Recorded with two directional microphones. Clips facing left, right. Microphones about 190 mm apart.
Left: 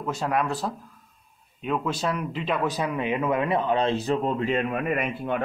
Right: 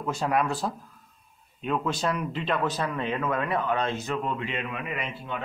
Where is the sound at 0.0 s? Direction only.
Centre (ahead or behind).